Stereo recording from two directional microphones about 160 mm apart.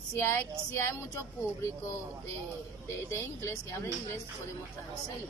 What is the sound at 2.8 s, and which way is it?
Speech, 15° left (ahead or behind).